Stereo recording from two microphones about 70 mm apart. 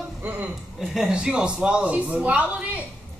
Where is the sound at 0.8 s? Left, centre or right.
Centre.